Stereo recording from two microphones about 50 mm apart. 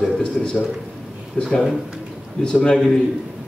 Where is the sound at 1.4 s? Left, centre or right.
Left.